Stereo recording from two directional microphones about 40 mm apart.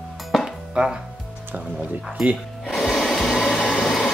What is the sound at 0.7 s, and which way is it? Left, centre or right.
Speech, right.